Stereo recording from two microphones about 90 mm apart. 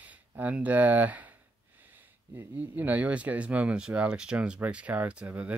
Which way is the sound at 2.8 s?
20° right (ahead or behind).